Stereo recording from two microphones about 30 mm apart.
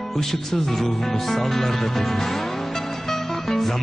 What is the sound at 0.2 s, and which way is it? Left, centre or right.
Speech, centre.